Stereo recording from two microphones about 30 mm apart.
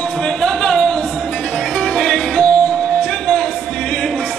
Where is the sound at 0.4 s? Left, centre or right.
Left.